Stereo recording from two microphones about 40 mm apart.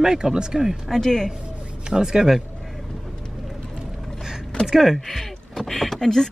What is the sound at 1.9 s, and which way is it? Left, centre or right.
Speech, centre.